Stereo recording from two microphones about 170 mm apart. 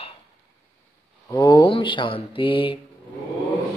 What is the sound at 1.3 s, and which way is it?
Mantra, 20° left (ahead or behind).